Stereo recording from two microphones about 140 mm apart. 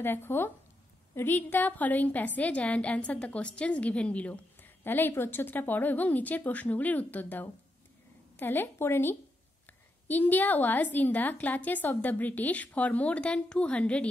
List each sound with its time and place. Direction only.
0.0 s a woman's voice: 15° left (ahead or behind)